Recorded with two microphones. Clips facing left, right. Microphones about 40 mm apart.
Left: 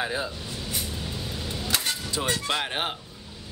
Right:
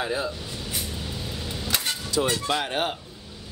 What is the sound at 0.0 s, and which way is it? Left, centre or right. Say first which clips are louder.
Vehicle: right 2 dB; centre.